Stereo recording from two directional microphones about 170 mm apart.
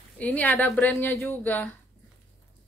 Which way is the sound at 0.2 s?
10° left (ahead or behind).